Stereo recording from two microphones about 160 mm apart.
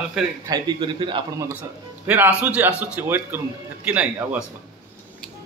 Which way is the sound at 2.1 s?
10° right (ahead or behind).